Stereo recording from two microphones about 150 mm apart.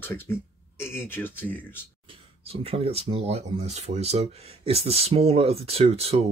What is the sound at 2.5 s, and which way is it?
Speech, 40° right (ahead or behind).